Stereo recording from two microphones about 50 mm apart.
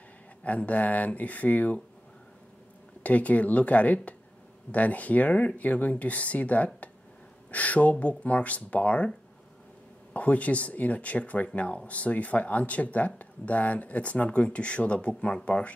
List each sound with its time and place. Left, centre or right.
0.4 s speech: left
3.0 s speech: left
10.1 s speech: left